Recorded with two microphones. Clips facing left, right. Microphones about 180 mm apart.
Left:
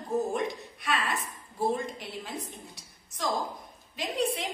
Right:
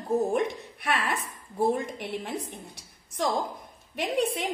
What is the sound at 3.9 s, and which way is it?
Speech, 60° right (ahead or behind).